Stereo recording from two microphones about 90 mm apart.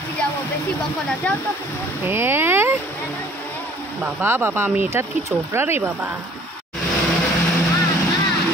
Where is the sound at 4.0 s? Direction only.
25° right (ahead or behind).